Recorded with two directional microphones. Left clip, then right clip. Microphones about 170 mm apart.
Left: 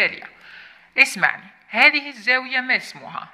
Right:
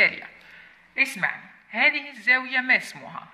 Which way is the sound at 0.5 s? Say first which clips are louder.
Left 10 dB; 40° left (ahead or behind).